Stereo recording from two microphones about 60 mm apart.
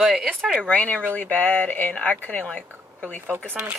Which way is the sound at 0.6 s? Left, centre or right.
Left.